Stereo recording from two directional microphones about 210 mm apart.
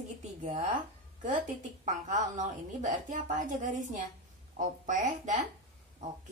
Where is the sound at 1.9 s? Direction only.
35° right (ahead or behind).